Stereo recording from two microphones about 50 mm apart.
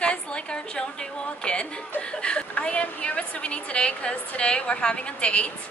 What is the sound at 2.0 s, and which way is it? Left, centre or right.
A woman's voice, left.